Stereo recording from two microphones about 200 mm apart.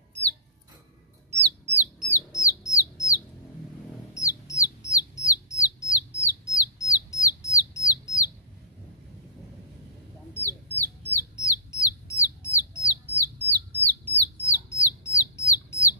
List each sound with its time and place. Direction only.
1.3 s bird: 55° right (ahead or behind)
2.0 s bird: 15° left (ahead or behind)
4.1 s bird: 15° left (ahead or behind)
10.3 s bird: 10° left (ahead or behind)